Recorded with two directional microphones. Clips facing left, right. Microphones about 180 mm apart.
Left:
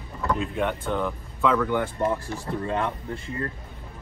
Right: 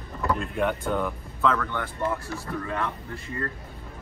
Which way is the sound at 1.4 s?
10° left (ahead or behind).